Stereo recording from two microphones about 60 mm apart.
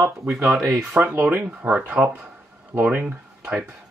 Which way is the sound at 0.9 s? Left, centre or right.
Right.